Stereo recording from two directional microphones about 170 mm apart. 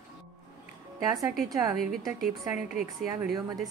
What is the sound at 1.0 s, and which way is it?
Speech, 20° right (ahead or behind).